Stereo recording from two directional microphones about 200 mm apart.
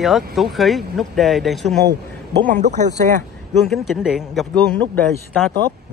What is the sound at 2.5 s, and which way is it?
Speech, 35° right (ahead or behind).